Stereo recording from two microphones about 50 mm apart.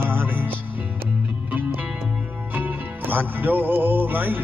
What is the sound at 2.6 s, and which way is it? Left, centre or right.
Music, right.